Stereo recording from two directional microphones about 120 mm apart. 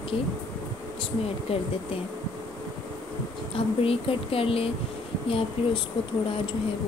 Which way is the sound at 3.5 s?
50° left (ahead or behind).